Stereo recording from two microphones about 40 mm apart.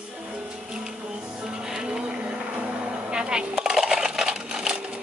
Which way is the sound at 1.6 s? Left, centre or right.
Centre.